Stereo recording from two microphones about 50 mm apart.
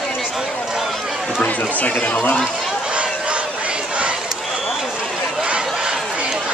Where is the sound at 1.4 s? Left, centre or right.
Left.